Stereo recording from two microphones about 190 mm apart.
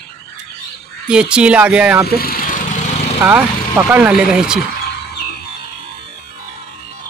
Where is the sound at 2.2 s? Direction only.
50° left (ahead or behind).